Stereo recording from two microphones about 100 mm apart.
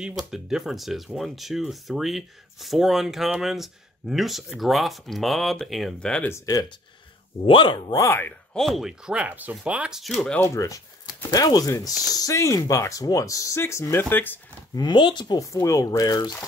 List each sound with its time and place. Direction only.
0.3 s speech: 5° right (ahead or behind)
7.4 s speech: 50° left (ahead or behind)
8.0 s speech: 20° left (ahead or behind)
8.5 s speech: centre (ahead or behind)
10.4 s speech: 30° left (ahead or behind)
14.8 s speech: 50° left (ahead or behind)
15.4 s speech: 30° left (ahead or behind)